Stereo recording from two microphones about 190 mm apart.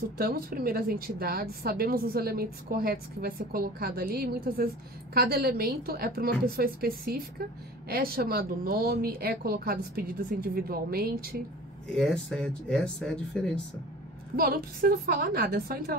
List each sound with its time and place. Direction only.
0.2 s a woman's voice: 50° right (ahead or behind)
11.9 s speech: 5° left (ahead or behind)
14.3 s a woman's voice: 50° right (ahead or behind)